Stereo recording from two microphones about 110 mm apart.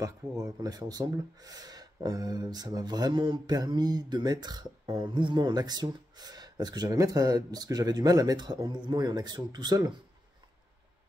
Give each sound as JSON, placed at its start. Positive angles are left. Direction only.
{"t": 0.0, "sound": "speech", "side_deg": -35}